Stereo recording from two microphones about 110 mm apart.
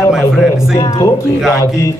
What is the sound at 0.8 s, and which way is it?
Speech, 35° left (ahead or behind).